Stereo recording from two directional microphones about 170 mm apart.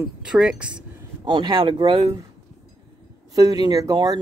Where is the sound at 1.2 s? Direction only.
30° right (ahead or behind).